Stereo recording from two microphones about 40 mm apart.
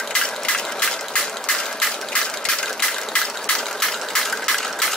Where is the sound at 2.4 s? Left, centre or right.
Centre.